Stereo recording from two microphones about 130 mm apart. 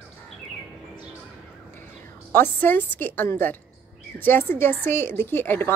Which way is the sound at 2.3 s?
15° left (ahead or behind).